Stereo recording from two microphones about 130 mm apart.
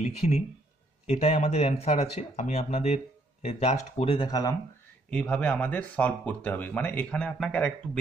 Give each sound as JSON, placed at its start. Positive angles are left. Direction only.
{"t": 0.2, "sound": "speech", "side_deg": 60}
{"t": 4.3, "sound": "speech", "side_deg": 30}
{"t": 5.1, "sound": "speech", "side_deg": 10}